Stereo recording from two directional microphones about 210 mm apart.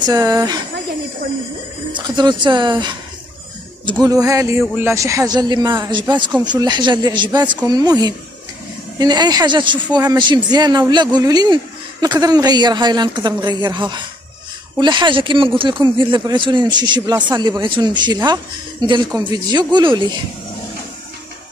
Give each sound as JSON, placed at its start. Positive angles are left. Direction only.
{"t": 0.0, "sound": "a man's voice", "side_deg": -20}
{"t": 1.9, "sound": "speech", "side_deg": -20}
{"t": 4.0, "sound": "a man's voice", "side_deg": -15}